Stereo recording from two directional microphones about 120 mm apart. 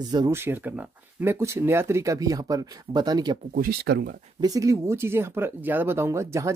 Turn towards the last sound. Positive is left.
turn(degrees=-25)  # may be behind; listen again after turning